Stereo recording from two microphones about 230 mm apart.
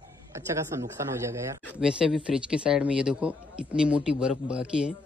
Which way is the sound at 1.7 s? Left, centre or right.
Centre.